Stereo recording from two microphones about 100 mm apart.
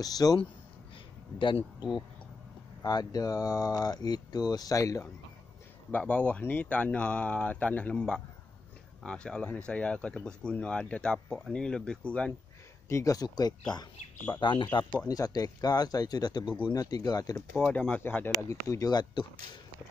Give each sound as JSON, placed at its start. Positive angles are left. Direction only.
{"t": 0.0, "sound": "speech", "side_deg": 40}
{"t": 2.8, "sound": "speech", "side_deg": 40}
{"t": 5.9, "sound": "speech", "side_deg": 15}
{"t": 12.8, "sound": "speech", "side_deg": 30}
{"t": 14.4, "sound": "speech", "side_deg": 55}
{"t": 15.0, "sound": "speech", "side_deg": 40}
{"t": 17.7, "sound": "speech", "side_deg": 15}